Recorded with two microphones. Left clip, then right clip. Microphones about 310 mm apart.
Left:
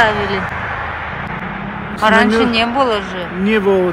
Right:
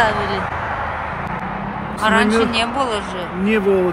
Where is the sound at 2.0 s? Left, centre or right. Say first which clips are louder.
Left 4 dB; centre.